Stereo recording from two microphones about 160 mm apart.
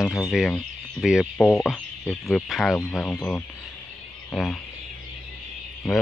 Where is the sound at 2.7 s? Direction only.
15° left (ahead or behind).